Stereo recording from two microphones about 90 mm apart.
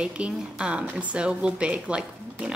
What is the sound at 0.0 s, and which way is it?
Speech, 10° right (ahead or behind).